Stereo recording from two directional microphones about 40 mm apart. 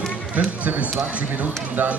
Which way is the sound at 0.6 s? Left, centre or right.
Right.